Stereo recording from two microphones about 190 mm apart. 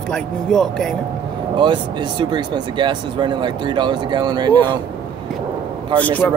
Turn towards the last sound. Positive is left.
turn(degrees=10)  # may be behind; listen again after turning